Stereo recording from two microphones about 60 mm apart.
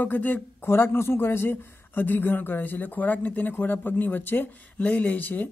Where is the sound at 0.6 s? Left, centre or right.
Left.